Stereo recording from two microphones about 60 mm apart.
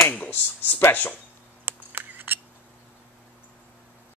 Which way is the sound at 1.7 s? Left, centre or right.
Right.